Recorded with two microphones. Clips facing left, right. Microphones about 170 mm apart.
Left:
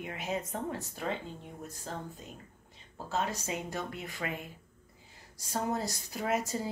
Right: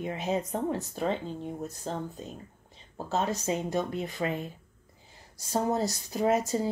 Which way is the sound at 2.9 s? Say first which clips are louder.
Right 4 dB; 35° right (ahead or behind).